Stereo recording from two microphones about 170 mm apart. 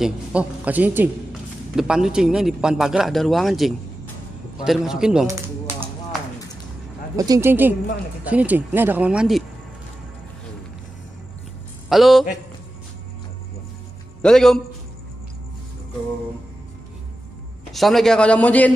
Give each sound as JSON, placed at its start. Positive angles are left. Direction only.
{"t": 0.0, "sound": "a woman's voice", "side_deg": -5}
{"t": 5.2, "sound": "a sound", "side_deg": -15}
{"t": 7.2, "sound": "speech", "side_deg": -20}
{"t": 11.9, "sound": "speech", "side_deg": 0}
{"t": 14.2, "sound": "speech", "side_deg": 5}
{"t": 17.7, "sound": "speech", "side_deg": 0}